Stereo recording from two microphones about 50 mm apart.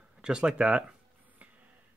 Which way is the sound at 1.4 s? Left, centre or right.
Right.